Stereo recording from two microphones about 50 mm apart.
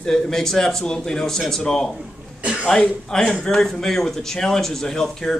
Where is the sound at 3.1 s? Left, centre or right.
Centre.